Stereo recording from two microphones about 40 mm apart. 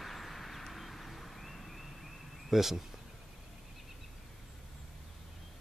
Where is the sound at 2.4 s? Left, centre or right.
Centre.